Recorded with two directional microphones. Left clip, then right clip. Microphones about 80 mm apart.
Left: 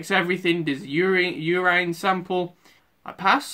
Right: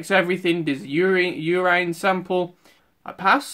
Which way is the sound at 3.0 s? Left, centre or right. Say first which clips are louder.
Right 2 dB; centre.